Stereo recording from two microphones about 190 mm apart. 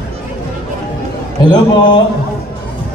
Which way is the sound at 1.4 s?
25° left (ahead or behind).